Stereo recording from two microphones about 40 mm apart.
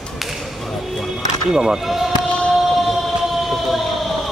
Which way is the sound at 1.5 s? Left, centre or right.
Centre.